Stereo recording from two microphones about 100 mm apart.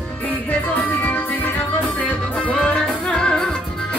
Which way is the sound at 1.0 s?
20° left (ahead or behind).